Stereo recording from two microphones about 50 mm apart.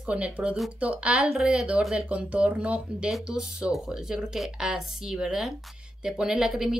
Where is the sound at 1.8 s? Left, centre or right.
Centre.